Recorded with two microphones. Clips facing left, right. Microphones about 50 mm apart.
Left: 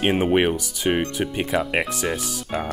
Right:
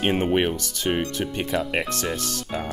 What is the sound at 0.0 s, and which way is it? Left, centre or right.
Speech, centre.